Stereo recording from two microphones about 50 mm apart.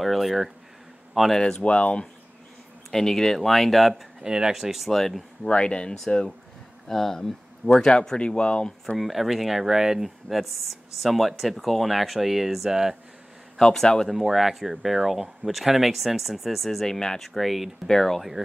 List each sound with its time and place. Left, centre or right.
0.0 s speech: centre
1.4 s speech: left
2.9 s speech: centre
3.9 s speech: centre
5.4 s speech: left
8.9 s speech: centre
13.6 s speech: centre
14.0 s speech: centre